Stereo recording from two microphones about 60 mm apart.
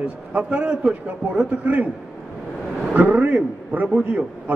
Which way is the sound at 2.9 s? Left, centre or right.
Right.